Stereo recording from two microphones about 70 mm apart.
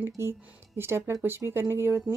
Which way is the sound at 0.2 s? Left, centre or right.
Right.